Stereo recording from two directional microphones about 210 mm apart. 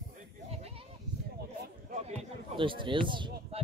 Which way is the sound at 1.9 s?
25° right (ahead or behind).